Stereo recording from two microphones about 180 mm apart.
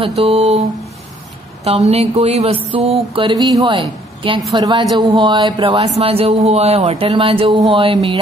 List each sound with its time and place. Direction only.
0.0 s speech: 35° right (ahead or behind)
1.6 s speech: 35° right (ahead or behind)